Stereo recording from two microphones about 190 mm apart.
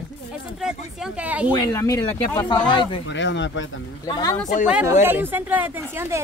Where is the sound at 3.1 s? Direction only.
70° left (ahead or behind).